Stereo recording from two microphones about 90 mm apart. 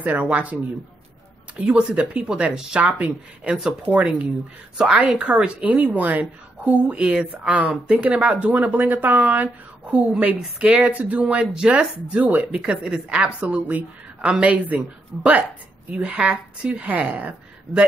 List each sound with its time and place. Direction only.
0.0 s speech: 20° right (ahead or behind)
1.6 s speech: 10° right (ahead or behind)
16.0 s speech: 15° right (ahead or behind)